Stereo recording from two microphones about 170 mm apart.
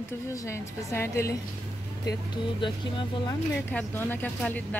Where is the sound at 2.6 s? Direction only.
30° left (ahead or behind).